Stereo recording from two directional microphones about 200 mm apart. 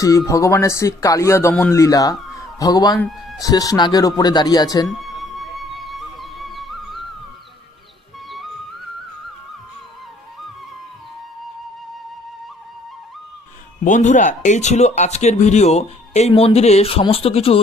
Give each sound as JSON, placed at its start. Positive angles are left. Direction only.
{"t": 0.0, "sound": "speech", "side_deg": 15}
{"t": 2.3, "sound": "a sound", "side_deg": 20}
{"t": 3.0, "sound": "speech", "side_deg": 0}
{"t": 3.3, "sound": "speech", "side_deg": 20}
{"t": 4.8, "sound": "music", "side_deg": 0}
{"t": 13.8, "sound": "speech", "side_deg": 40}